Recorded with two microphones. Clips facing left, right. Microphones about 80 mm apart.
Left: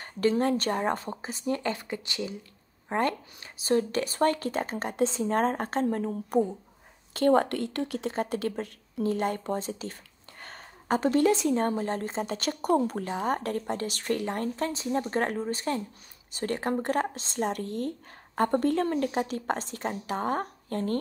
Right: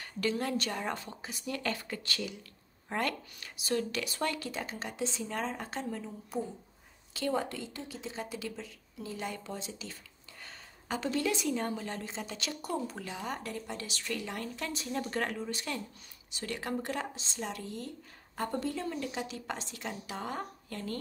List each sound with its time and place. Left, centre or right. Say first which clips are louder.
0.0 s speech: left 8 dB; left
10.4 s a sound: left 6 dB; left
11.5 s speech: left 8 dB; left